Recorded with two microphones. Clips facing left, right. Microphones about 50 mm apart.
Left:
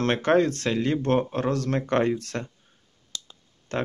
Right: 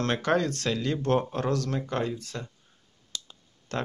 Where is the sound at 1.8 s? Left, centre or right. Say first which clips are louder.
Left 7 dB; left.